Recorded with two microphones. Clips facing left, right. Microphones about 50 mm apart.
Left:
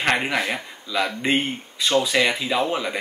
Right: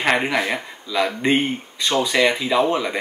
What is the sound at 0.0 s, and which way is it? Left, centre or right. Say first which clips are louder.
Speech: right 2 dB; centre.